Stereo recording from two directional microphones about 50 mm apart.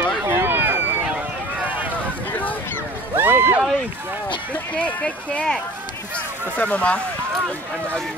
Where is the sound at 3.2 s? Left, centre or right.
Right.